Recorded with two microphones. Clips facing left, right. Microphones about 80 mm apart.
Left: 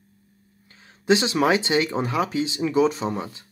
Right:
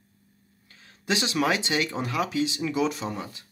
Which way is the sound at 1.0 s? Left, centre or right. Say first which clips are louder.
Left 6 dB; left.